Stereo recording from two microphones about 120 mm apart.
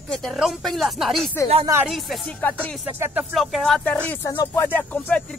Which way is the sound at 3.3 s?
Centre (ahead or behind).